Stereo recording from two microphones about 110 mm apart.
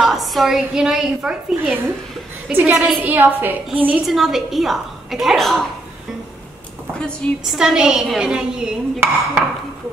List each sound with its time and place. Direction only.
0.0 s a woman's voice: centre (ahead or behind)
4.0 s a woman's voice: centre (ahead or behind)
7.0 s a woman's voice: 10° left (ahead or behind)
7.5 s a woman's voice: 5° right (ahead or behind)